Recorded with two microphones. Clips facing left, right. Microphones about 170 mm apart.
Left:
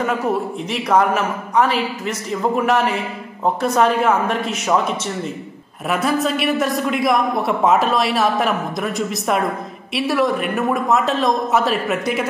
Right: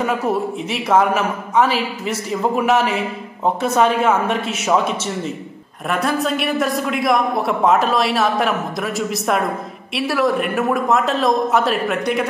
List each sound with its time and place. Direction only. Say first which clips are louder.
0.7 s a man's voice: even; 5° right (ahead or behind)
5.9 s a man's voice: left 1 dB; centre (ahead or behind)